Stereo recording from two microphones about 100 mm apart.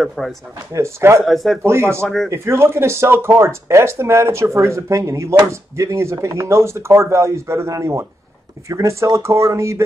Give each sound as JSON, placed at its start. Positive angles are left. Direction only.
{"t": 0.0, "sound": "speech", "side_deg": 0}
{"t": 0.7, "sound": "speech", "side_deg": -30}
{"t": 1.2, "sound": "speech", "side_deg": 0}
{"t": 1.6, "sound": "speech", "side_deg": -25}
{"t": 2.0, "sound": "speech", "side_deg": 5}
{"t": 2.2, "sound": "speech", "side_deg": -25}